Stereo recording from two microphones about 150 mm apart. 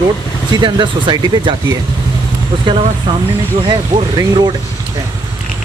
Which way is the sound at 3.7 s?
30° right (ahead or behind).